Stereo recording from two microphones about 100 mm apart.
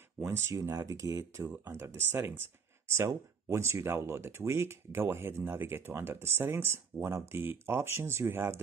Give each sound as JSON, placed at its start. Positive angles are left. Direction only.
{"t": 0.5, "sound": "speech", "side_deg": -30}